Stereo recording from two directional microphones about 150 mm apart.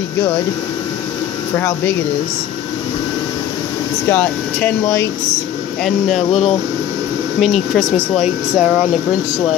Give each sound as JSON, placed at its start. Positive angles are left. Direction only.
{"t": 4.1, "sound": "speech", "side_deg": 10}
{"t": 5.9, "sound": "speech", "side_deg": 0}
{"t": 7.7, "sound": "speech", "side_deg": -5}